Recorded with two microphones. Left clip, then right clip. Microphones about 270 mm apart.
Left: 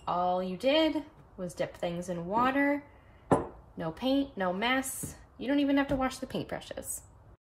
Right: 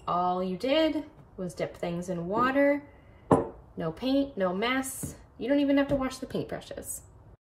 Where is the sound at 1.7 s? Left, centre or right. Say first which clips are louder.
Right 1 dB; centre.